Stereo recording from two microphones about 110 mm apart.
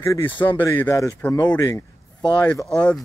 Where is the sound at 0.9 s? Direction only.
30° left (ahead or behind).